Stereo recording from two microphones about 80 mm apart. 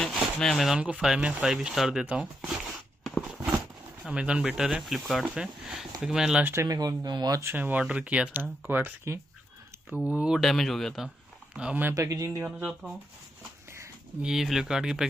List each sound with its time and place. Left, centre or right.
0.1 s a sound: centre
0.7 s speech: centre
3.3 s a sound: centre
5.3 s speech: centre
6.4 s speech: right
7.5 s speech: right
10.0 s speech: centre
10.4 s speech: centre
11.5 s speech: centre
11.9 s speech: right
14.2 s speech: centre